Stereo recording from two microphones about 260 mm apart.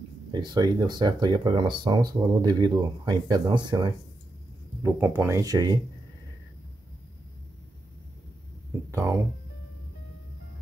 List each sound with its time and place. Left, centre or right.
0.3 s speech: centre
8.9 s speech: centre